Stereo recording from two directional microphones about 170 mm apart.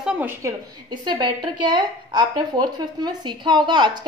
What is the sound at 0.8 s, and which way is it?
A woman's voice, 25° right (ahead or behind).